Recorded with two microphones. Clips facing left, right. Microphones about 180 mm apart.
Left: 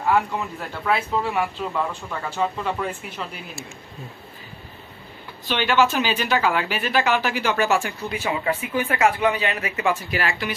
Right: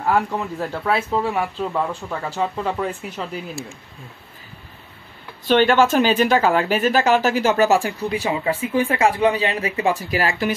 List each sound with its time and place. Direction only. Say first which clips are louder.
0.0 s speech: right 1 dB; 35° right (ahead or behind)
5.5 s speech: right 5 dB; 45° right (ahead or behind)